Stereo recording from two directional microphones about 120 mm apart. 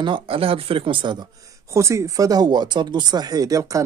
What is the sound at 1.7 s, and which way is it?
Speech, 25° right (ahead or behind).